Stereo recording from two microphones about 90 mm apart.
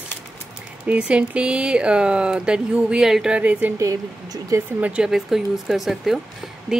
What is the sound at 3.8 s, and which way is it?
Speech, 40° right (ahead or behind).